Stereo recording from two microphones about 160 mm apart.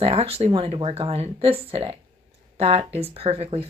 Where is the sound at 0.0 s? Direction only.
40° right (ahead or behind).